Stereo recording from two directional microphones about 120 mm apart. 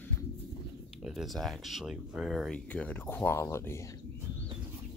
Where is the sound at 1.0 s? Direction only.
Centre (ahead or behind).